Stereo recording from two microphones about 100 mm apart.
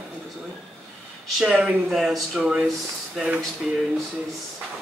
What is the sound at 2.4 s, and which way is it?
Speech, 10° right (ahead or behind).